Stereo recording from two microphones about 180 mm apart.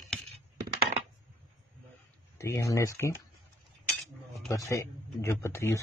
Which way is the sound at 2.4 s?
15° left (ahead or behind).